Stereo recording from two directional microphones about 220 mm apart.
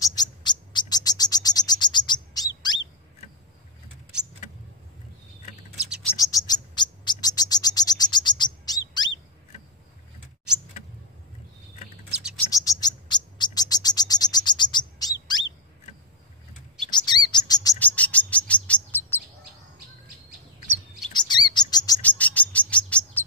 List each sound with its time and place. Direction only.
0.0 s bird: 15° left (ahead or behind)
6.1 s bird: 15° left (ahead or behind)
12.1 s bird: 5° right (ahead or behind)
12.4 s bird: 15° left (ahead or behind)
16.9 s chirp: 20° left (ahead or behind)
17.7 s bird: 5° left (ahead or behind)
21.1 s chirp: 20° left (ahead or behind)
22.0 s bird: 5° left (ahead or behind)